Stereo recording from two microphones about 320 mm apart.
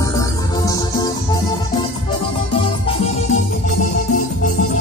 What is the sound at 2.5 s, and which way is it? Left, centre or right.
Music, centre.